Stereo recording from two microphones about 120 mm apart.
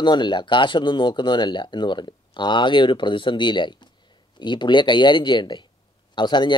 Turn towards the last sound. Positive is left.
turn(degrees=40)  # may be behind; listen again after turning